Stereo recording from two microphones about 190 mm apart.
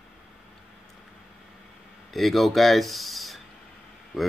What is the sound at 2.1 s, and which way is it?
Speech, centre (ahead or behind).